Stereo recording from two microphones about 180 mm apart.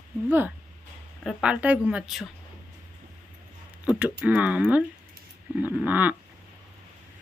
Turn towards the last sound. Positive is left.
turn(degrees=-10)  # may be behind; listen again after turning